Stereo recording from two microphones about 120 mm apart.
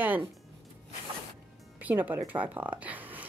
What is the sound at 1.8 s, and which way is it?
Speech, 15° right (ahead or behind).